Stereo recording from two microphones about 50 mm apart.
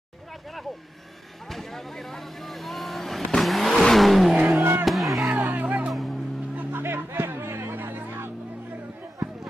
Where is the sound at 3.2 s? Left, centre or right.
Centre.